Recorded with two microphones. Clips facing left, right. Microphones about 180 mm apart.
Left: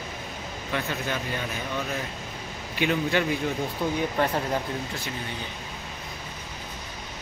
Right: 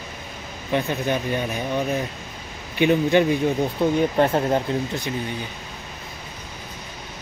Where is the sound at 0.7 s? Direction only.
20° right (ahead or behind).